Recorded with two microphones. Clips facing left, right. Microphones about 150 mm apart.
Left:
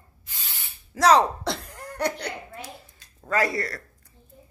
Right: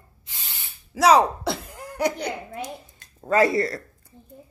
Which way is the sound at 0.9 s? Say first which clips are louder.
Right 2 dB; 10° right (ahead or behind).